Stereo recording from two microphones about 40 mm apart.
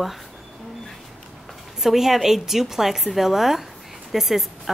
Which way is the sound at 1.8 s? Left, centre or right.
Centre.